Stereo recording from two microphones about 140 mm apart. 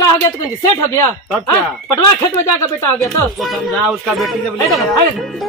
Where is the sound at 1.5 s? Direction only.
20° left (ahead or behind).